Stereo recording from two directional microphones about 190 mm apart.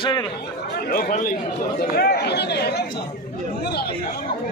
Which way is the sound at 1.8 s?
55° left (ahead or behind).